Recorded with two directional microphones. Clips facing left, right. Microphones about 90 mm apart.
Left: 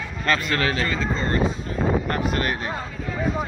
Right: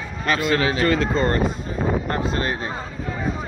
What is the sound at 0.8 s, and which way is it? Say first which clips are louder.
Speech: right 6 dB; 60° right (ahead or behind).